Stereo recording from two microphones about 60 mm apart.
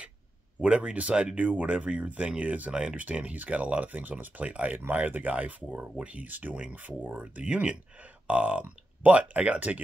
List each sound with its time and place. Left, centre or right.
0.6 s speech: centre